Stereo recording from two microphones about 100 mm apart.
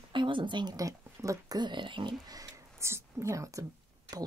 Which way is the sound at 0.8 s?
35° right (ahead or behind).